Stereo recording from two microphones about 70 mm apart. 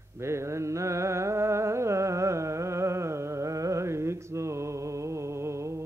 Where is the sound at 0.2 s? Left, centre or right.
Right.